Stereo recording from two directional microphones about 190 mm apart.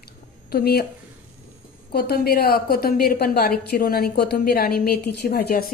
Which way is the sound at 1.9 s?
55° left (ahead or behind).